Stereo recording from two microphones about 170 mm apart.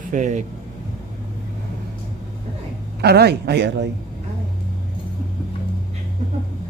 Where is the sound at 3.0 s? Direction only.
70° right (ahead or behind).